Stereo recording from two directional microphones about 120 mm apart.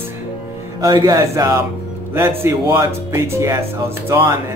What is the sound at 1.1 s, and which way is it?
Speech, 25° right (ahead or behind).